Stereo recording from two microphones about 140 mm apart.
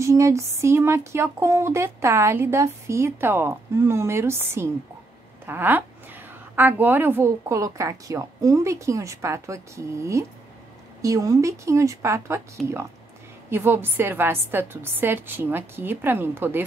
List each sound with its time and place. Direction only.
0.0 s a woman's voice: 20° right (ahead or behind)
13.5 s a woman's voice: 15° right (ahead or behind)